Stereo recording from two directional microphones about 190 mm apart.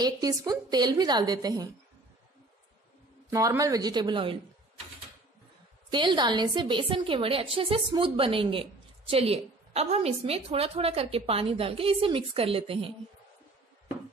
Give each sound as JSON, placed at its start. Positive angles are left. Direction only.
{"t": 0.0, "sound": "a woman's voice", "side_deg": -20}
{"t": 3.3, "sound": "a woman's voice", "side_deg": -15}
{"t": 5.9, "sound": "a woman's voice", "side_deg": -25}